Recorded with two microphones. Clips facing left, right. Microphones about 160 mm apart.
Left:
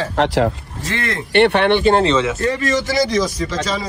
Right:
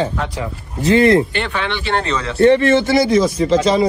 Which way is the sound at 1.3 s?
65° left (ahead or behind).